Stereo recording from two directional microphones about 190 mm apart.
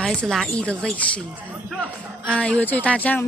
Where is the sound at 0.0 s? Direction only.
5° left (ahead or behind).